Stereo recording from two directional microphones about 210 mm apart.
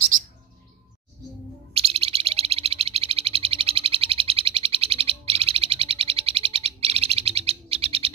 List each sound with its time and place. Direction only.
1.7 s bird: 30° right (ahead or behind)